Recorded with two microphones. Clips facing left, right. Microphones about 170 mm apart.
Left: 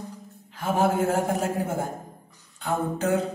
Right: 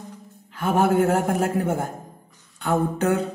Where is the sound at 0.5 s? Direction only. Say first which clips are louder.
Right 3 dB; 60° right (ahead or behind).